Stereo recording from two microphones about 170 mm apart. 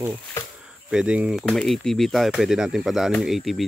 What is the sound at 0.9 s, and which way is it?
Speech, 5° right (ahead or behind).